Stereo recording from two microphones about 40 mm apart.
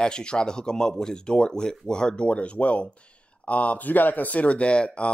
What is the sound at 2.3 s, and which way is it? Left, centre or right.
Speech, left.